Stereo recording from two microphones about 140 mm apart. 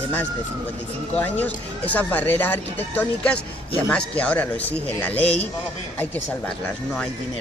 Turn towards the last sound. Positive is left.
turn(degrees=5)  # may be behind; listen again after turning